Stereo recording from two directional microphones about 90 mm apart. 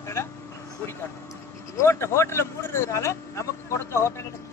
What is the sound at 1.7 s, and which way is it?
Speech, 30° left (ahead or behind).